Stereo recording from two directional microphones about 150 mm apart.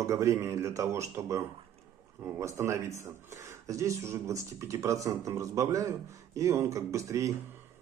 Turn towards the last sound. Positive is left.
turn(degrees=-20)  # may be behind; listen again after turning